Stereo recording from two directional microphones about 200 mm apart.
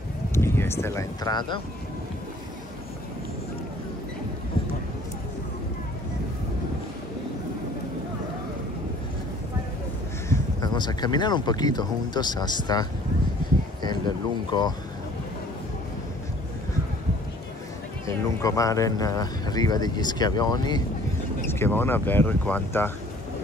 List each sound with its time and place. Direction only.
0.3 s speech: 15° left (ahead or behind)
10.3 s speech: 20° left (ahead or behind)
13.8 s speech: 20° left (ahead or behind)
18.0 s speech: 15° left (ahead or behind)